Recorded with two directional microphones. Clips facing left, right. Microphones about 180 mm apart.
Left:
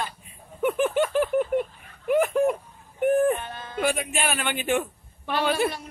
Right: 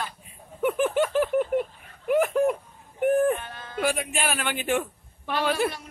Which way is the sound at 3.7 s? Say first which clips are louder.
Left 1 dB; centre (ahead or behind).